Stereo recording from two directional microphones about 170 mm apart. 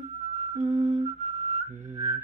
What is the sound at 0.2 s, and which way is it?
Music, 45° right (ahead or behind).